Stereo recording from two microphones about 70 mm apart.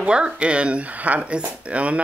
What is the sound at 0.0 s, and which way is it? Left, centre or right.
Speech, centre.